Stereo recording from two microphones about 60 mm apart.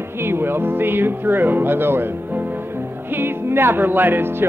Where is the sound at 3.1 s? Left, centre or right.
Right.